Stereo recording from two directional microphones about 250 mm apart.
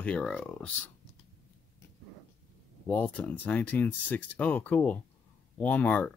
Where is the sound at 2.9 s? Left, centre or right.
Centre.